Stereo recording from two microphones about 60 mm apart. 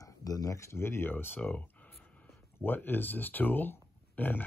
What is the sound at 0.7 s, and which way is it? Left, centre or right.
Speech, left.